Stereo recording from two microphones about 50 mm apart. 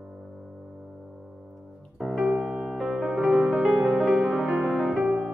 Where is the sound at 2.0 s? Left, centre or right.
Centre.